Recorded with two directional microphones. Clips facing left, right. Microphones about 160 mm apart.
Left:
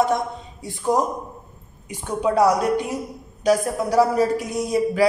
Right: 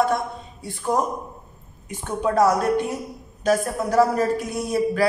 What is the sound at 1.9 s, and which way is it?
A man's voice, 15° left (ahead or behind).